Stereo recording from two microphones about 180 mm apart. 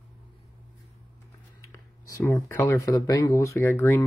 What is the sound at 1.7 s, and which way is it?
Speech, 15° left (ahead or behind).